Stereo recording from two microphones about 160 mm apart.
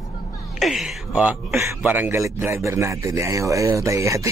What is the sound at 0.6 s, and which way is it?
A man's voice, centre (ahead or behind).